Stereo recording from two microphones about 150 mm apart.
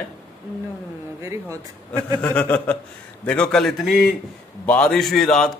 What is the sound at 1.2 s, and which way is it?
Speech, 20° right (ahead or behind).